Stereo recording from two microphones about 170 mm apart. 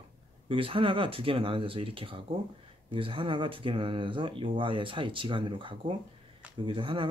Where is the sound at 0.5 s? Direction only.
30° right (ahead or behind).